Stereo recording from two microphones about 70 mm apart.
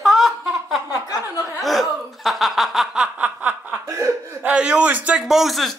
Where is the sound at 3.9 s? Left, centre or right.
Right.